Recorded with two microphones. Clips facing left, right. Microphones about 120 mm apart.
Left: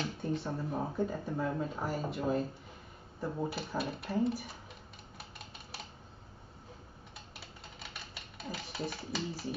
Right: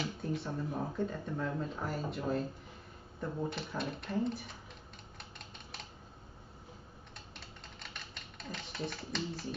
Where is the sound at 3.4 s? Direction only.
5° left (ahead or behind).